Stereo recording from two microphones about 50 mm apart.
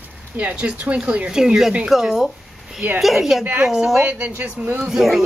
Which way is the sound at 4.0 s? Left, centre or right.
Right.